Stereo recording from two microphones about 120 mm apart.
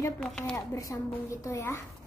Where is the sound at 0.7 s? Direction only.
25° left (ahead or behind).